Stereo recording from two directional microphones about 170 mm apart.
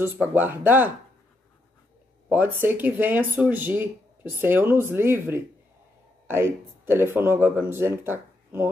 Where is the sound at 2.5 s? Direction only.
10° right (ahead or behind).